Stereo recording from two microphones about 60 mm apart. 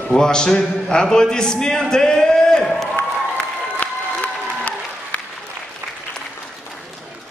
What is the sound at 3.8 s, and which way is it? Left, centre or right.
Applause, left.